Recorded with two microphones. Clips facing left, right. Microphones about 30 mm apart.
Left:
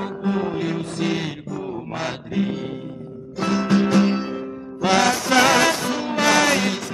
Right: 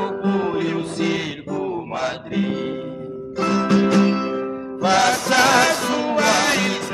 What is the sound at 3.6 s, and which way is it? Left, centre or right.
Music, right.